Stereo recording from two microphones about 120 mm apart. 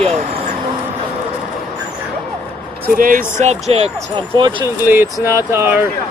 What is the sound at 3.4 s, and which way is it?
Speech, 65° right (ahead or behind).